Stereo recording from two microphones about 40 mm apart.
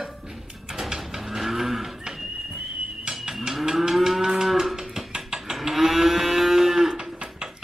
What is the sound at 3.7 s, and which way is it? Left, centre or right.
Moo, centre.